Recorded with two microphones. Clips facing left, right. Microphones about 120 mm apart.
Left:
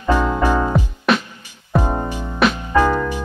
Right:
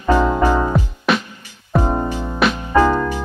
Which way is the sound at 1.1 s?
Centre (ahead or behind).